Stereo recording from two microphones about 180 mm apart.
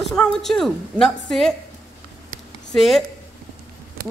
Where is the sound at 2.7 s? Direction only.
Centre (ahead or behind).